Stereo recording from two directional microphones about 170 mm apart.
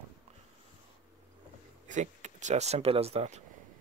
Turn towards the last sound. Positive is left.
turn(degrees=-40)  # may be behind; listen again after turning